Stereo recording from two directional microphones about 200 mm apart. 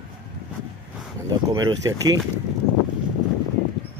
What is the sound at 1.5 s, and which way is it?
Speech, 15° right (ahead or behind).